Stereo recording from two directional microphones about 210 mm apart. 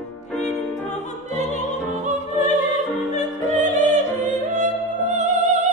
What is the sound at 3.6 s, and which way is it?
Opera, 35° right (ahead or behind).